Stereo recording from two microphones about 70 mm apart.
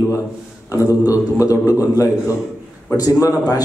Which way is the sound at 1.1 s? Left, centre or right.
Left.